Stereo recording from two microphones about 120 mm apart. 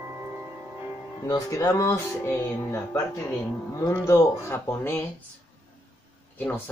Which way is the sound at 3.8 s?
20° left (ahead or behind).